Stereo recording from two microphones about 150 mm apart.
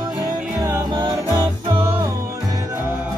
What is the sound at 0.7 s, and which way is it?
Music, 25° right (ahead or behind).